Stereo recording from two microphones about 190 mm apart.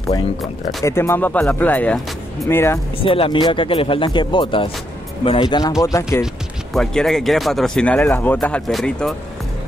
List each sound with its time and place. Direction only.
0.8 s speech: 15° left (ahead or behind)
3.0 s speech: 30° left (ahead or behind)
6.7 s speech: 5° left (ahead or behind)